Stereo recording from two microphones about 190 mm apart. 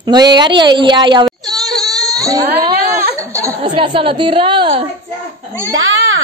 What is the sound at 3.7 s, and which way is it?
A woman's voice, 30° right (ahead or behind).